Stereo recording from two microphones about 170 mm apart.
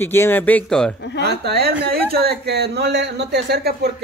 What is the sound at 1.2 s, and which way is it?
Speech, 70° right (ahead or behind).